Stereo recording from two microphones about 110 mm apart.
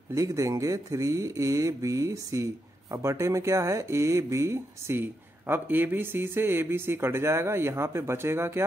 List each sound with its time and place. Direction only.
0.1 s speech: 30° right (ahead or behind)